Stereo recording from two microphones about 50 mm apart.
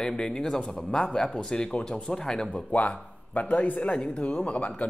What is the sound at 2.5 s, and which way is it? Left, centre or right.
Speech, left.